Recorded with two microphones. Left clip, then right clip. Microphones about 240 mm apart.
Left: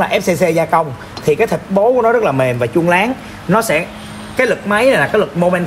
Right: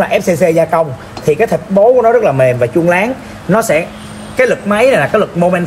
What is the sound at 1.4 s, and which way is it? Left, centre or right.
A man's voice, left.